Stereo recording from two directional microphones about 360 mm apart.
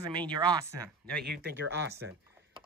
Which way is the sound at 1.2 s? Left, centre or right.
Right.